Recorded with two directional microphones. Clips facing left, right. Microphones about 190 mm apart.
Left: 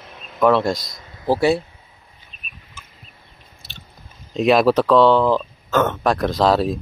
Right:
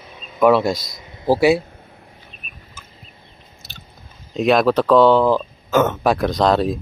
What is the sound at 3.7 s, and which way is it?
Chewing, centre (ahead or behind).